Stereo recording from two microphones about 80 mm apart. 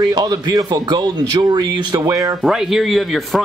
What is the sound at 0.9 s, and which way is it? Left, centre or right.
Speech, right.